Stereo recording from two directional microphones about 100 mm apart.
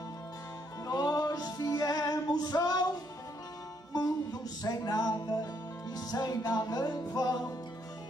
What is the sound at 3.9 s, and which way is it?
Music, 40° left (ahead or behind).